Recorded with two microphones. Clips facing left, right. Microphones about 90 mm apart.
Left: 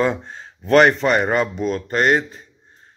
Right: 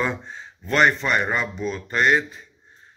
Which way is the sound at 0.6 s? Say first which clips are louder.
Left 6 dB; 70° left (ahead or behind).